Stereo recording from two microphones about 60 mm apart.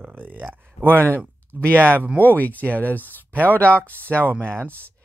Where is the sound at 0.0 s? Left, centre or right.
Right.